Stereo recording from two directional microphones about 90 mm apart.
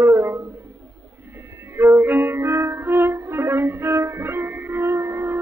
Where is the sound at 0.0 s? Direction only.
30° right (ahead or behind).